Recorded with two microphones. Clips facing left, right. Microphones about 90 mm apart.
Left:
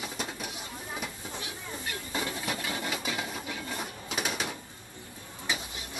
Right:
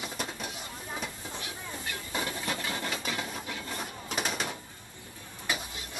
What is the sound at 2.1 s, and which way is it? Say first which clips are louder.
Wood: even; 10° left (ahead or behind).